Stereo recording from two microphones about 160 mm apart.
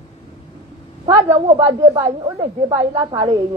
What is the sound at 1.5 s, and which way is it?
Speech, 35° right (ahead or behind).